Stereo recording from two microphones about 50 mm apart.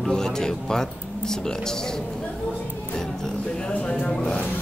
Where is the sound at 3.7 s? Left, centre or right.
Left.